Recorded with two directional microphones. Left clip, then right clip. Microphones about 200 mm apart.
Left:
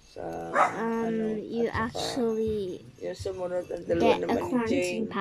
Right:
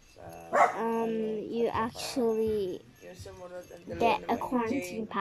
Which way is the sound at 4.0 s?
Centre (ahead or behind).